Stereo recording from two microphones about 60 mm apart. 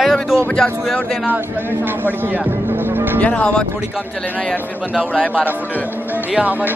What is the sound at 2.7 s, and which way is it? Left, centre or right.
Music, right.